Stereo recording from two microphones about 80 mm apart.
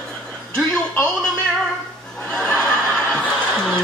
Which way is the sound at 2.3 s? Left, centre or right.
Centre.